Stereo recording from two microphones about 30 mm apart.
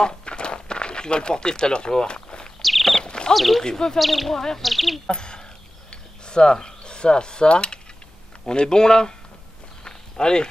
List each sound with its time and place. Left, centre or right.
0.0 s a sound: left
2.6 s a sound: centre
3.0 s horse: left
3.3 s speech: centre
3.6 s speech: left
4.0 s speech: centre
4.3 s speech: centre
4.6 s speech: centre
5.0 s speech: left
5.9 s cutlery: left
8.5 s speech: left
9.8 s walk: left